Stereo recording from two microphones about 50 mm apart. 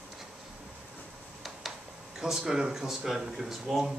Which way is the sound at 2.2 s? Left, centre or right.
Centre.